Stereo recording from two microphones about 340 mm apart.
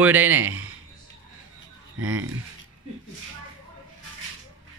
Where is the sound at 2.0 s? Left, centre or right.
Right.